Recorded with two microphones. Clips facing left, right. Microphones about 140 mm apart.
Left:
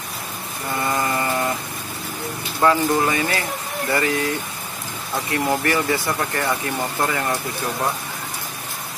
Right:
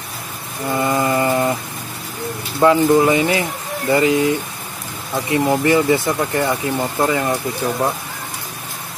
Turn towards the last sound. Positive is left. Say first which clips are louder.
# right 5 dB
turn(degrees=-20)  # may be behind; listen again after turning